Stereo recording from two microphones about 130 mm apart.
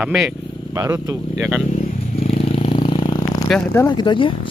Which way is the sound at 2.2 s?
50° left (ahead or behind).